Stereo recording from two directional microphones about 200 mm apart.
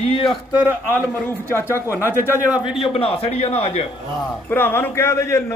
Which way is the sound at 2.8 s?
30° left (ahead or behind).